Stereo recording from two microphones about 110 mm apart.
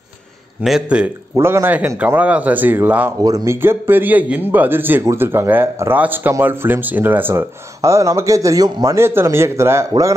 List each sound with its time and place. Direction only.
0.6 s speech: 10° right (ahead or behind)
1.4 s speech: 20° right (ahead or behind)
3.2 s speech: 35° right (ahead or behind)
3.5 s speech: 20° right (ahead or behind)